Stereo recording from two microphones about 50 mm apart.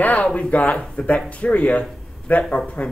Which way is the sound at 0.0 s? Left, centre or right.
Left.